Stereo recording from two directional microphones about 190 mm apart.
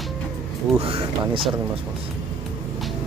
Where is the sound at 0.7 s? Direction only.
30° right (ahead or behind).